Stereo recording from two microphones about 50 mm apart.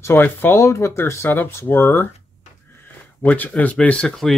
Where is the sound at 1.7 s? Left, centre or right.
Left.